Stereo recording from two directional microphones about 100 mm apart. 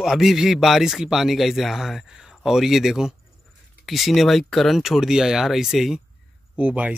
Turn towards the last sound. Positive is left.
turn(degrees=-15)  # may be behind; listen again after turning